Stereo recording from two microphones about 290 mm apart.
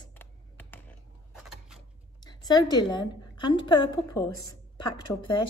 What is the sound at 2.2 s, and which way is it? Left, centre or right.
A woman's voice, centre.